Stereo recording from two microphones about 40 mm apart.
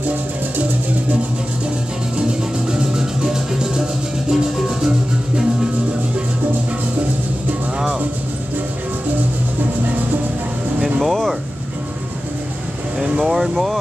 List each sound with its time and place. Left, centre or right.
2.7 s music: centre
11.0 s a sound: centre
13.2 s vehicle: centre